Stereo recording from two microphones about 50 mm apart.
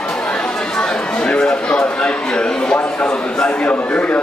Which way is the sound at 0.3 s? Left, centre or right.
Centre.